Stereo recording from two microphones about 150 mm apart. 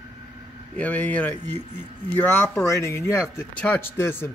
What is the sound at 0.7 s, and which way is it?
Speech, 10° left (ahead or behind).